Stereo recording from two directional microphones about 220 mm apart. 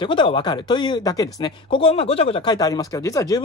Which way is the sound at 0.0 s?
20° left (ahead or behind).